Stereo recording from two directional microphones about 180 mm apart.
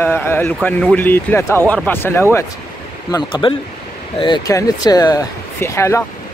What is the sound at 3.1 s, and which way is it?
Speech, 30° left (ahead or behind).